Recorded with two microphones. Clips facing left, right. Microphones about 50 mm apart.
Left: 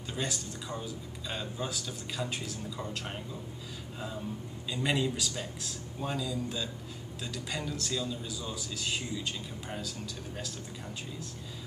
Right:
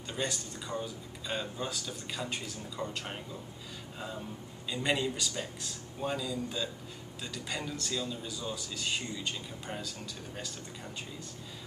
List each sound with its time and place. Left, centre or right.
0.1 s a man's voice: centre
4.6 s a man's voice: centre